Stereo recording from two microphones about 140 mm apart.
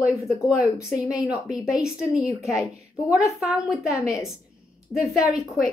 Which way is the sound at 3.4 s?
25° left (ahead or behind).